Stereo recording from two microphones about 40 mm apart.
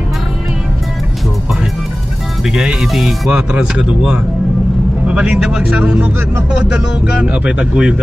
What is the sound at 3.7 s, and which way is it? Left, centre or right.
Speech, centre.